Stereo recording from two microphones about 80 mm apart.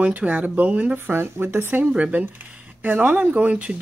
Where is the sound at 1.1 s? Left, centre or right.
Right.